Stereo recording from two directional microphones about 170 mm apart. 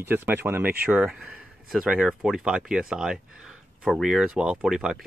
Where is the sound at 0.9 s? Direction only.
5° right (ahead or behind).